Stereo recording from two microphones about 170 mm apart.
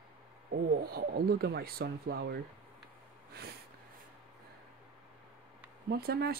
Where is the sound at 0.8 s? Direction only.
65° right (ahead or behind).